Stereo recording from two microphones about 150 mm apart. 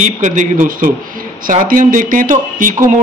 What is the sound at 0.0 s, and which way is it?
Speech, 55° right (ahead or behind).